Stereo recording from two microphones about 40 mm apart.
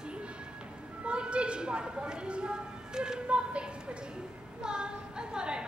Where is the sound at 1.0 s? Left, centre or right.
Right.